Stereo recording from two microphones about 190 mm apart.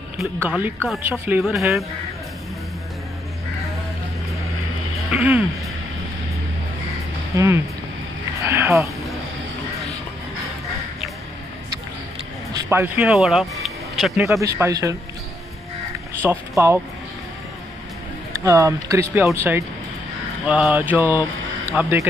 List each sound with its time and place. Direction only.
0.2 s a woman's voice: 5° right (ahead or behind)
5.1 s speech: 10° right (ahead or behind)
7.3 s speech: 15° right (ahead or behind)
12.6 s speech: 10° right (ahead or behind)
14.4 s speech: 15° right (ahead or behind)
16.2 s speech: 15° right (ahead or behind)
18.3 s speech: 15° right (ahead or behind)